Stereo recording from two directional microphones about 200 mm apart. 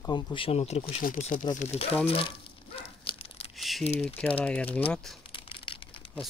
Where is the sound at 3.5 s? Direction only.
Centre (ahead or behind).